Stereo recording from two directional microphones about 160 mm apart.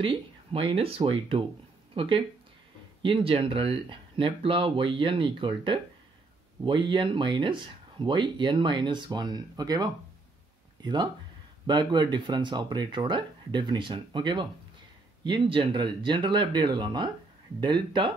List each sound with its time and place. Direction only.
0.0 s speech: 35° right (ahead or behind)